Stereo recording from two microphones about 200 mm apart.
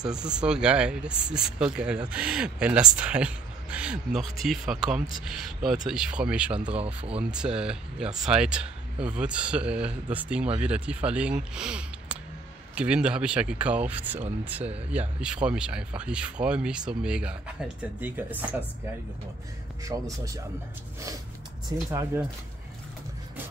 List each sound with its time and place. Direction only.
0.0 s speech: 5° right (ahead or behind)
19.8 s speech: 15° right (ahead or behind)
21.6 s speech: 15° right (ahead or behind)